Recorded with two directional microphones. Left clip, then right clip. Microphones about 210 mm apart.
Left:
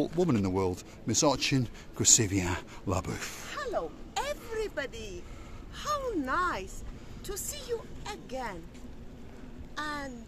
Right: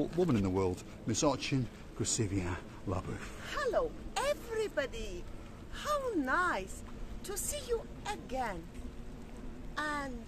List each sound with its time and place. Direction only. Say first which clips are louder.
0.0 s speech: left 3 dB; 35° left (ahead or behind); by 3.3 s 50° left (ahead or behind)
3.4 s a sound: right 2 dB; 5° right (ahead or behind)
5.8 s a woman's voice: left 2 dB; 5° left (ahead or behind)
9.8 s a woman's voice: even; centre (ahead or behind)